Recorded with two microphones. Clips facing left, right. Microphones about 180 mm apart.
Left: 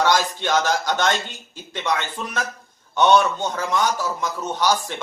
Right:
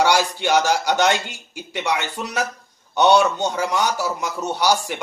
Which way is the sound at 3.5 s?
10° right (ahead or behind).